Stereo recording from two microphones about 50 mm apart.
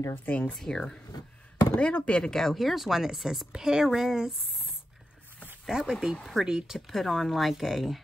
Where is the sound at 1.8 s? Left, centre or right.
Left.